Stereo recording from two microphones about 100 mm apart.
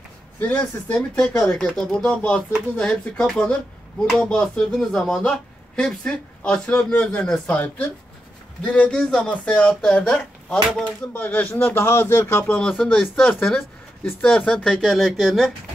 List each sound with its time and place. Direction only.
0.4 s speech: 15° left (ahead or behind)
7.6 s speech: 20° left (ahead or behind)
12.5 s speech: 10° left (ahead or behind)